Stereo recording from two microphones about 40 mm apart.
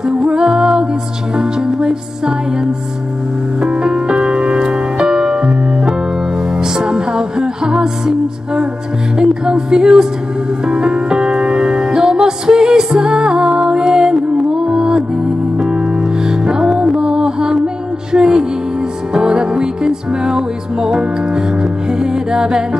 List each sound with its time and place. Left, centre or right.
0.0 s music: centre
9.2 s music: centre